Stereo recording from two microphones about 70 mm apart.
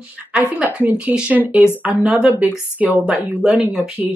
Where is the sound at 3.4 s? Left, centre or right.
Centre.